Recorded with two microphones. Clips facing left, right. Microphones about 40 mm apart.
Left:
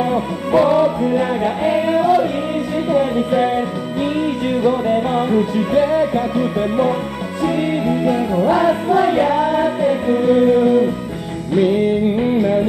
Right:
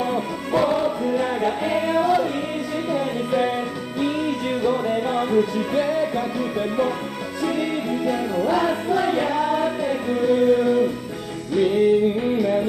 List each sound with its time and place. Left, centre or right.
0.5 s music: left
4.6 s music: left
8.5 s music: left